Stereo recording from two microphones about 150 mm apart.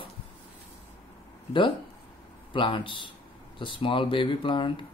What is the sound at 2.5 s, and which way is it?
Speech, 35° left (ahead or behind).